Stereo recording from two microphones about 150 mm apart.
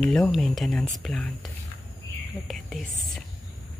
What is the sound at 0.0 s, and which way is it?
Speech, 5° left (ahead or behind).